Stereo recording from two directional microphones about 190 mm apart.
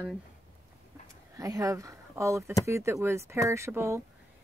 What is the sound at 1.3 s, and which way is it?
Speech, 15° right (ahead or behind).